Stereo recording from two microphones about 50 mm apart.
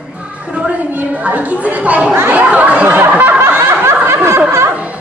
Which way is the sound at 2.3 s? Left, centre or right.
Right.